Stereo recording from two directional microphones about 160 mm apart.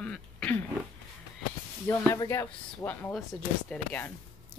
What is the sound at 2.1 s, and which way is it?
Speech, 20° left (ahead or behind).